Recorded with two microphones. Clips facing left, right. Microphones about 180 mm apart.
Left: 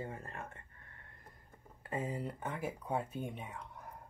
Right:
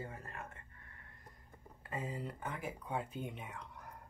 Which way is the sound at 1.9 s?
30° left (ahead or behind).